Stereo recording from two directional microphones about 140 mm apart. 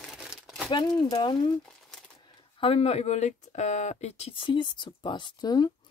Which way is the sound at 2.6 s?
45° left (ahead or behind).